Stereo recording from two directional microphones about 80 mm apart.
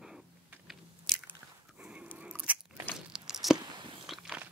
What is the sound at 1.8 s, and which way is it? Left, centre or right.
Dog, centre.